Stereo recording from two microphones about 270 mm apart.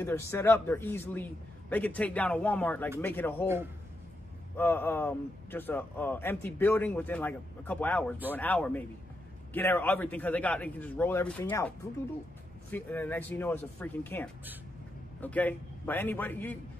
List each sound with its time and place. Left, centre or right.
0.0 s a man's voice: centre
4.6 s a man's voice: centre
12.7 s a man's voice: centre